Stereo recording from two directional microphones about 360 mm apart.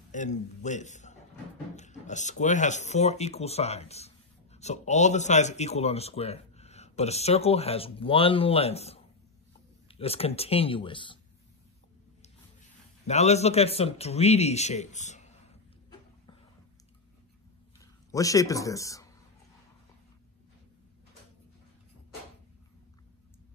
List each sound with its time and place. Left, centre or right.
0.1 s a man's voice: centre
13.0 s speech: centre
17.7 s speech: centre